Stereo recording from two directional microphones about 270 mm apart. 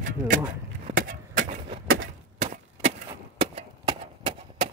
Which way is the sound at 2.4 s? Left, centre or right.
Right.